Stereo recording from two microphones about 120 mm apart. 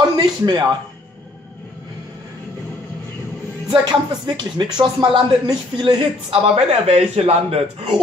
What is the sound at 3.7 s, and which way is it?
Speech, 40° right (ahead or behind).